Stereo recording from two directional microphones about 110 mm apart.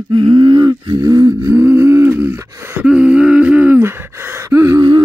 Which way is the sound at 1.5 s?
20° right (ahead or behind).